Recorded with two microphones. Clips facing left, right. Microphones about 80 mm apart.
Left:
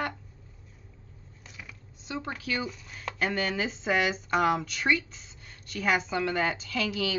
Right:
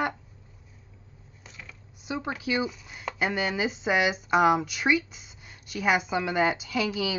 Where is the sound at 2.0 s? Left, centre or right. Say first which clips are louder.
Right 4 dB; centre.